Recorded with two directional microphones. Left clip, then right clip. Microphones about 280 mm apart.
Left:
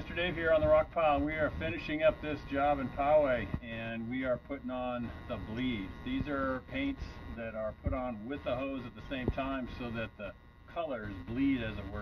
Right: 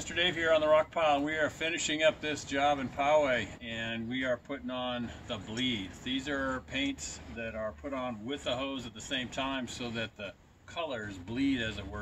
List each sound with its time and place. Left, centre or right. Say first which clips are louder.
0.1 s speech: right 2 dB; centre